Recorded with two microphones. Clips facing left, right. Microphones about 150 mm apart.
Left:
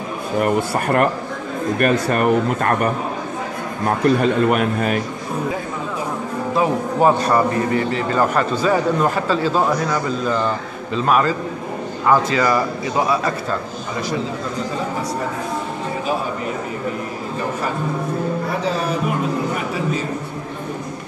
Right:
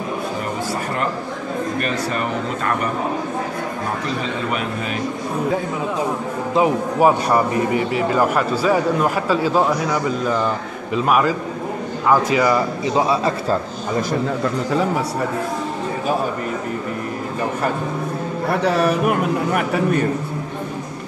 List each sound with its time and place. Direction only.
0.4 s speech: 60° left (ahead or behind)
4.0 s a man's voice: 55° left (ahead or behind)
6.5 s a man's voice: 15° right (ahead or behind)
18.5 s a man's voice: 65° right (ahead or behind)